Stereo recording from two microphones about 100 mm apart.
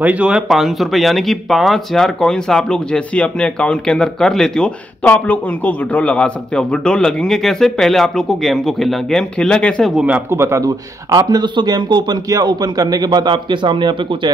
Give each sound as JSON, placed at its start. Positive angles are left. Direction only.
{"t": 0.0, "sound": "speech", "side_deg": -15}
{"t": 0.5, "sound": "speech", "side_deg": 0}
{"t": 5.0, "sound": "a man's voice", "side_deg": 15}
{"t": 9.9, "sound": "speech", "side_deg": -15}
{"t": 10.3, "sound": "speech", "side_deg": -30}